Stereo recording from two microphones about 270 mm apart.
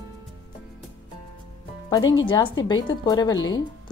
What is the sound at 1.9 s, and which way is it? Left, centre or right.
Speech, centre.